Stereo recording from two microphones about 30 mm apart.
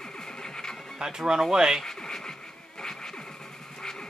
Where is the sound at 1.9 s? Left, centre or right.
Left.